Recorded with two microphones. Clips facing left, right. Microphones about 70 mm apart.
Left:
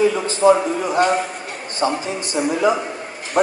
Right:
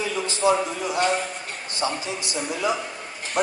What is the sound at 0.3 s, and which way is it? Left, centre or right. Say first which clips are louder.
A man's voice: left 4 dB; left.